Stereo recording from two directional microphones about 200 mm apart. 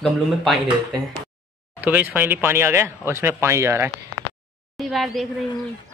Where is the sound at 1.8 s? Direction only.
10° right (ahead or behind).